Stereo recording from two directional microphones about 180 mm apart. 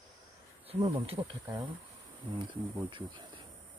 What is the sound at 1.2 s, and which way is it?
Speech, 25° right (ahead or behind).